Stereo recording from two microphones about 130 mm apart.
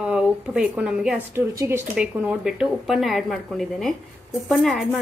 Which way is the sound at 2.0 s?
5° right (ahead or behind).